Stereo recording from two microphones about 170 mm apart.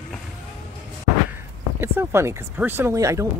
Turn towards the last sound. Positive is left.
turn(degrees=-20)  # may be behind; listen again after turning